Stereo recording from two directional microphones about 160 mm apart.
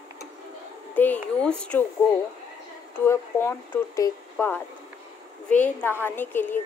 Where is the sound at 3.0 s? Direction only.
15° left (ahead or behind).